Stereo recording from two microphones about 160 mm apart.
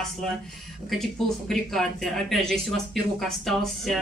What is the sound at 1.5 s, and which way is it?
Speech, centre (ahead or behind).